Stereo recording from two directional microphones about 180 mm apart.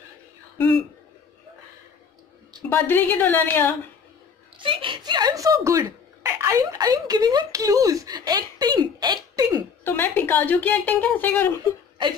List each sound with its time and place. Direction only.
2.7 s speech: 10° left (ahead or behind)
4.6 s speech: 30° right (ahead or behind)
9.8 s speech: 10° left (ahead or behind)